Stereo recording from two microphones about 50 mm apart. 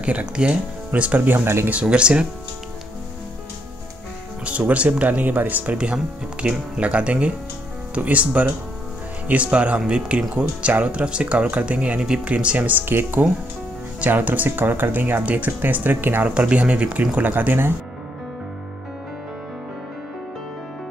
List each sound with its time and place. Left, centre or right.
0.0 s speech: right
1.3 s speech: right
1.7 s speech: right
4.5 s speech: right
12.8 s speech: right
14.0 s speech: right
16.3 s speech: right